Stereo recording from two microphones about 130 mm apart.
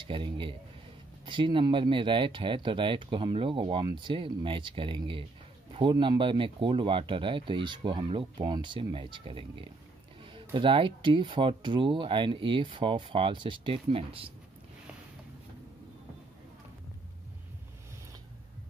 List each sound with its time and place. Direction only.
0.0 s speech: 40° right (ahead or behind)